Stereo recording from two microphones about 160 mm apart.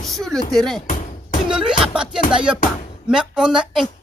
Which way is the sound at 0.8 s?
50° left (ahead or behind).